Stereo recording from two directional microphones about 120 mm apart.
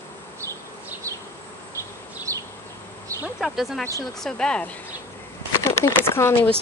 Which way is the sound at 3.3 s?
Centre (ahead or behind).